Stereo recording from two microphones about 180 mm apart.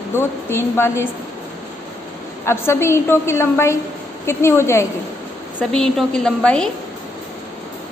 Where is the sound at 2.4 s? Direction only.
15° left (ahead or behind).